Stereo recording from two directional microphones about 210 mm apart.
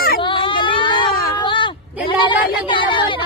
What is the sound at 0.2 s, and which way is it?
Whimper, 25° left (ahead or behind).